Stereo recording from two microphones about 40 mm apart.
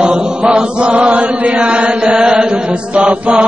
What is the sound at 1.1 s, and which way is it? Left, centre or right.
Chant, right.